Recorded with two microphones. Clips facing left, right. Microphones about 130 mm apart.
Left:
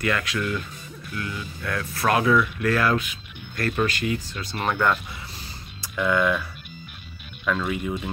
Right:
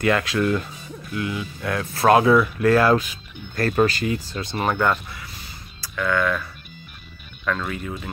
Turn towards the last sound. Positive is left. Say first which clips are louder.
# left 1 dB
turn(degrees=10)  # may be behind; listen again after turning